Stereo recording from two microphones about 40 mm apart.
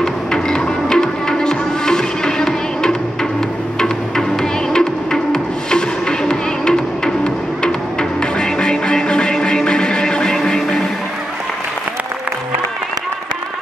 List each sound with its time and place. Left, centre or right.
0.0 s music: centre